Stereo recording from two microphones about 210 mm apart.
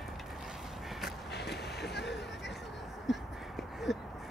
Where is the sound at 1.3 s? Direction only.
50° left (ahead or behind).